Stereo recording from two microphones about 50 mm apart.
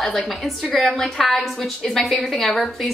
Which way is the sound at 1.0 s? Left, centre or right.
Centre.